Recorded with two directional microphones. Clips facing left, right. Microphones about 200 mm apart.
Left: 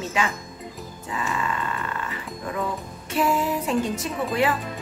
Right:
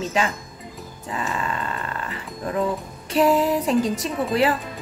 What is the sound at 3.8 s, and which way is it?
Speech, 35° right (ahead or behind).